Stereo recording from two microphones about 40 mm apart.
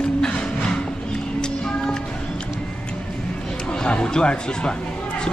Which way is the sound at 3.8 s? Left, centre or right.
Left.